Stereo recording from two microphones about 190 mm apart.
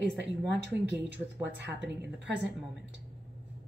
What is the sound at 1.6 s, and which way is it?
Speech, 65° right (ahead or behind).